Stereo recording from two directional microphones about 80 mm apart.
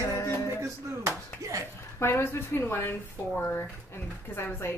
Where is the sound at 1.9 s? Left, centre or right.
Left.